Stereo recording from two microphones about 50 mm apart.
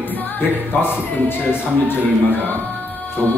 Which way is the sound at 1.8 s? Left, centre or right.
Left.